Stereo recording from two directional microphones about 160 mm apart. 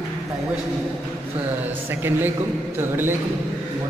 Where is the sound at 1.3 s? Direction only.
10° right (ahead or behind).